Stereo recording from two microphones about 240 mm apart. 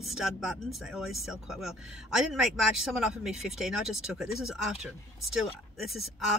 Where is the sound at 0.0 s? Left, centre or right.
Centre.